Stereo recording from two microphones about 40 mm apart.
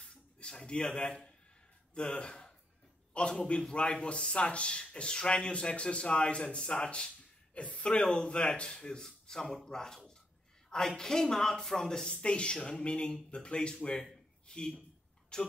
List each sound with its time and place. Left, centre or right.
0.0 s a sound: left
0.9 s a man's voice: centre
11.0 s speech: centre
12.2 s speech: left